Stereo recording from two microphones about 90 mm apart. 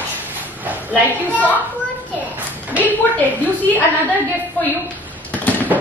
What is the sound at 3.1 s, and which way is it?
A woman's voice, 20° left (ahead or behind).